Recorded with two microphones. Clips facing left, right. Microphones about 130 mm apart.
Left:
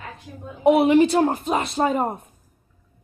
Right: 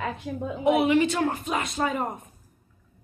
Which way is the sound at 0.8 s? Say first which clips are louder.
Left 6 dB; 35° left (ahead or behind).